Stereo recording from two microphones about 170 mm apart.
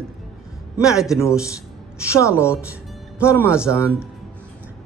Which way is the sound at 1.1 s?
15° left (ahead or behind).